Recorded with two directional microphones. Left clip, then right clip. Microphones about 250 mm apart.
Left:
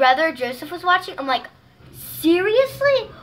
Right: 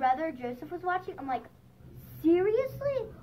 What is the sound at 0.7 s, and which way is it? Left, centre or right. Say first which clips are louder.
Speech: left 14 dB; left.